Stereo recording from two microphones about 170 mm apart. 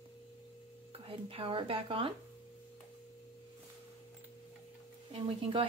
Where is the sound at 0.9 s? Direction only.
35° right (ahead or behind).